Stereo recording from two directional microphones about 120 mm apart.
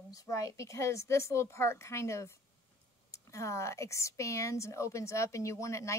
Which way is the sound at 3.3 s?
25° left (ahead or behind).